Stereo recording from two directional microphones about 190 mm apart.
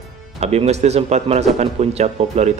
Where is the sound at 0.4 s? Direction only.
35° right (ahead or behind).